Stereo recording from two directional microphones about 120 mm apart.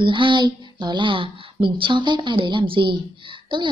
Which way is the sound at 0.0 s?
45° right (ahead or behind).